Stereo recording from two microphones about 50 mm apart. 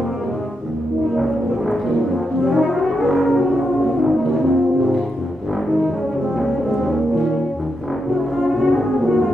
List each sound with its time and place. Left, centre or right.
1.1 s music: centre
2.4 s brass instrument: centre
6.4 s brass instrument: centre
8.4 s brass instrument: centre